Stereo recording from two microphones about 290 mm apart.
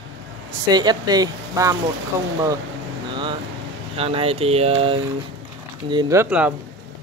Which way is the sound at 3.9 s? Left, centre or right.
Centre.